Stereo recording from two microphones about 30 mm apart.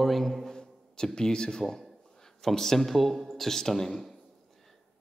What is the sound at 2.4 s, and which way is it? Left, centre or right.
A man's voice, centre.